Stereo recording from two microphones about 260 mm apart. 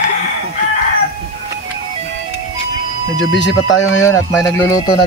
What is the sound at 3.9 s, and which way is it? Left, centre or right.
Speech, centre.